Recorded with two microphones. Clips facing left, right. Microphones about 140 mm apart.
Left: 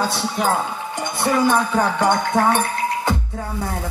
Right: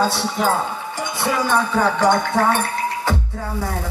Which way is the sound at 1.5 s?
15° left (ahead or behind).